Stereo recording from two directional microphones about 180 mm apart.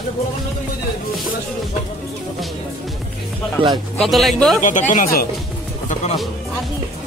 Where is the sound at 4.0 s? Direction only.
Centre (ahead or behind).